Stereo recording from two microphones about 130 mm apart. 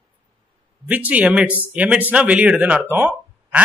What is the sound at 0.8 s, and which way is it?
Speech, 10° right (ahead or behind).